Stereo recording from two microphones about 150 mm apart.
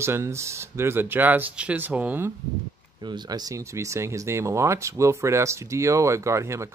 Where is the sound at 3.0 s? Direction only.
30° right (ahead or behind).